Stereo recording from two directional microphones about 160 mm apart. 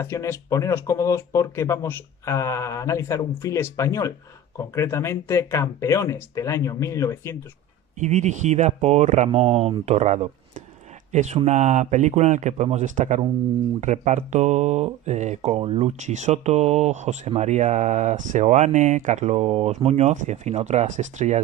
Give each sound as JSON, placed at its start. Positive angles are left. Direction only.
{"t": 0.0, "sound": "speech", "side_deg": 15}
{"t": 8.0, "sound": "speech", "side_deg": -50}